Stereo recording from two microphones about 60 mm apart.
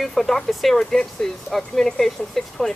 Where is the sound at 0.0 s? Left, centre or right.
Centre.